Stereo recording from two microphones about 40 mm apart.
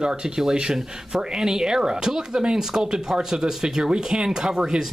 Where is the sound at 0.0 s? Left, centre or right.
Centre.